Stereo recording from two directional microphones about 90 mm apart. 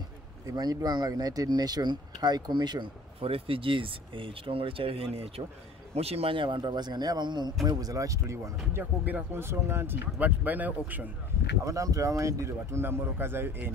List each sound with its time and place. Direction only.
0.5 s speech: 45° right (ahead or behind)
3.2 s speech: 90° right; by 7.5 s 55° right (ahead or behind)
7.6 s a man's voice: 40° right (ahead or behind)
8.7 s speech: 20° right (ahead or behind)
11.6 s a man's voice: 40° right (ahead or behind)